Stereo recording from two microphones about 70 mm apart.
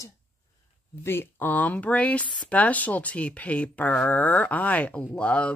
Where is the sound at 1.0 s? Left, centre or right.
Left.